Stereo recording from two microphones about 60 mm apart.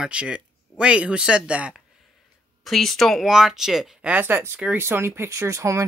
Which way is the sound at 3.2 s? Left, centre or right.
Centre.